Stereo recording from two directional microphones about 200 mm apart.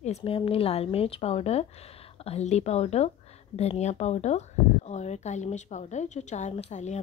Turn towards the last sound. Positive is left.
turn(degrees=35)  # may be behind; listen again after turning